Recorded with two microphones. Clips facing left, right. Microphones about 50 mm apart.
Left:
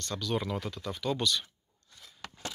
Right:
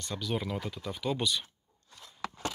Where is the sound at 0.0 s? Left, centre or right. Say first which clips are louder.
Left 1 dB; centre.